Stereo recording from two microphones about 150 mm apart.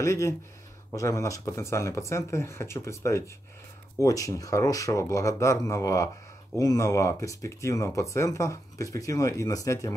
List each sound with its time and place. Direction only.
0.0 s speech: 20° left (ahead or behind)